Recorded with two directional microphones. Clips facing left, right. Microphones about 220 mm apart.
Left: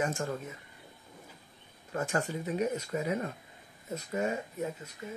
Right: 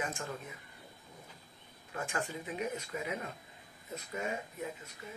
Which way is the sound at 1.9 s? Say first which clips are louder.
Left 6 dB; 40° left (ahead or behind).